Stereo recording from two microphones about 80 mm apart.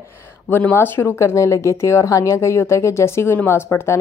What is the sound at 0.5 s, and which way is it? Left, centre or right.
Speech, left.